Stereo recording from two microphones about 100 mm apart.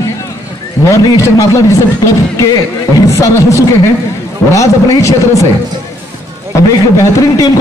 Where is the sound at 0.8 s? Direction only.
30° left (ahead or behind).